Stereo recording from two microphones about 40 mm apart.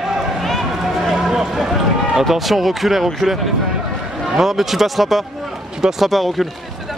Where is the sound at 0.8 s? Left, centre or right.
Centre.